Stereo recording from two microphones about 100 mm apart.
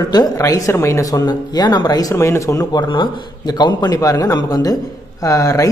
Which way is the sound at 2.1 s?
30° left (ahead or behind).